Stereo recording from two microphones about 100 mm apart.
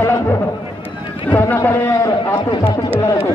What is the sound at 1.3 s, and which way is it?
Speech, 20° left (ahead or behind).